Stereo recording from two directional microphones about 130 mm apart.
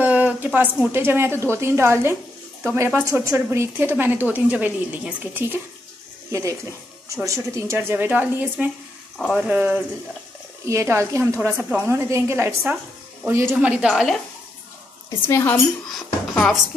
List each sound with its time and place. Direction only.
0.0 s a woman's voice: 10° right (ahead or behind)
7.2 s a woman's voice: 25° right (ahead or behind)
13.6 s a woman's voice: 10° right (ahead or behind)
15.0 s speech: 20° left (ahead or behind)
15.9 s speech: 5° left (ahead or behind)